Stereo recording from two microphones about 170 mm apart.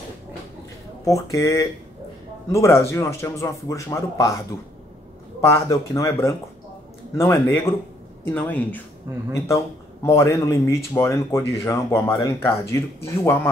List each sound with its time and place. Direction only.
1.0 s speech: 20° left (ahead or behind)
5.4 s speech: 20° left (ahead or behind)
9.1 s speech: 15° right (ahead or behind)
10.0 s speech: 15° left (ahead or behind)